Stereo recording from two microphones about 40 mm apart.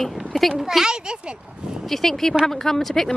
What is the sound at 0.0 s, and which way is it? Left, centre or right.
Speech, centre.